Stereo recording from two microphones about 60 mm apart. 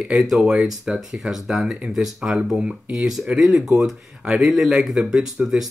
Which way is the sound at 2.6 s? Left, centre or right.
Centre.